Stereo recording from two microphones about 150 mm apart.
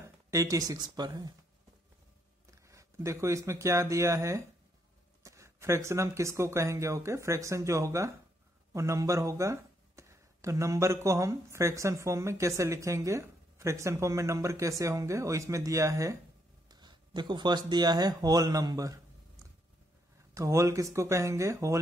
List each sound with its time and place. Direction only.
0.0 s speech: 20° right (ahead or behind)
2.7 s speech: 20° right (ahead or behind)
20.3 s speech: 20° right (ahead or behind)